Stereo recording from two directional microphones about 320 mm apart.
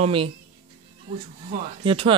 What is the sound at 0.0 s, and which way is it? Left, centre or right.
Speech, centre.